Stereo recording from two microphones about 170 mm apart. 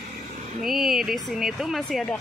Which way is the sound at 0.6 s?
Centre (ahead or behind).